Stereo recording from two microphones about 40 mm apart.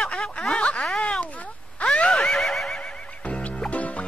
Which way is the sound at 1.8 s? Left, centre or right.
Left.